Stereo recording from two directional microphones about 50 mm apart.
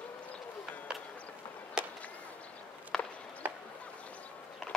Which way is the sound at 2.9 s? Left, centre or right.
Centre.